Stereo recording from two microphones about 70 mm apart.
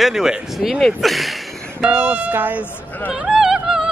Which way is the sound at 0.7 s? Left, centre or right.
Centre.